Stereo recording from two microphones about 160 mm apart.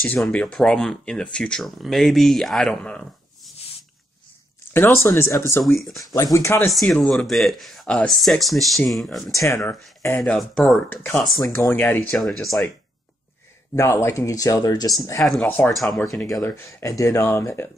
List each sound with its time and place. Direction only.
0.0 s speech: 10° left (ahead or behind)
4.7 s speech: 15° left (ahead or behind)
5.6 s speech: centre (ahead or behind)
6.0 s speech: 20° left (ahead or behind)
6.7 s speech: 5° left (ahead or behind)
9.7 s speech: 15° left (ahead or behind)
12.2 s speech: centre (ahead or behind)
13.7 s speech: 15° left (ahead or behind)
15.4 s speech: 10° left (ahead or behind)
15.7 s speech: centre (ahead or behind)
16.3 s speech: 15° left (ahead or behind)